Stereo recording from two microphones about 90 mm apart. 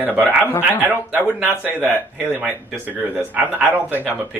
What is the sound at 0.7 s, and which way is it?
Speech, 20° right (ahead or behind).